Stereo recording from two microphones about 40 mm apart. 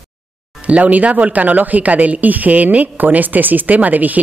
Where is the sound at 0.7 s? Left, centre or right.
Right.